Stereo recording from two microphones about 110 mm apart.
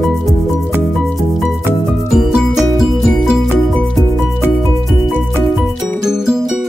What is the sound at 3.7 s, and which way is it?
Music, 5° left (ahead or behind).